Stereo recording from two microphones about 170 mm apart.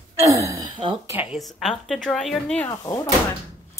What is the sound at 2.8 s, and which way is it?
Speech, 20° left (ahead or behind).